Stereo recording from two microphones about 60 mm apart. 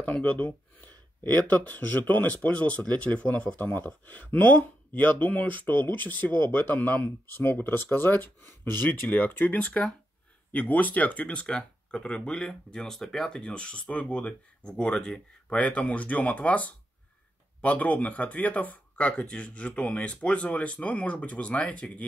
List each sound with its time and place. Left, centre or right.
0.0 s speech: left
9.1 s speech: left